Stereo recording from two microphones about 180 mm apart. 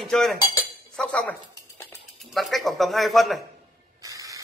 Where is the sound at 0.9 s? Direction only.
5° left (ahead or behind).